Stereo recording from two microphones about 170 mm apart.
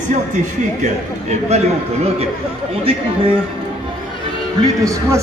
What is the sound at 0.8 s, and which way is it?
A man's voice, 40° right (ahead or behind).